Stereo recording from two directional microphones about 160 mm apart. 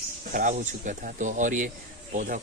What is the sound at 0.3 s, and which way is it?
Speech, 55° right (ahead or behind).